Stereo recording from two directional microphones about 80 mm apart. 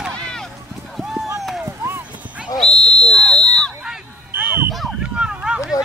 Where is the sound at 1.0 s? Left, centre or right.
Centre.